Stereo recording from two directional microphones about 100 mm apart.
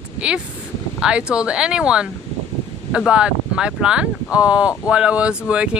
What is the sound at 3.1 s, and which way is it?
Speech, 10° right (ahead or behind).